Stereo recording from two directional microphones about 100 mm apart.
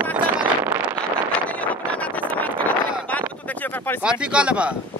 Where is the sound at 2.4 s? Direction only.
15° left (ahead or behind).